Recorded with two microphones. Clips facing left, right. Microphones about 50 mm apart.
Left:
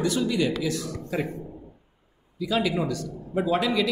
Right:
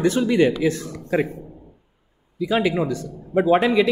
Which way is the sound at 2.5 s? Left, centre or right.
Right.